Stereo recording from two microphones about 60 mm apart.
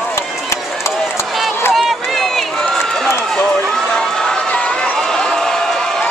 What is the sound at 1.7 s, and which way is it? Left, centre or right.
Run, centre.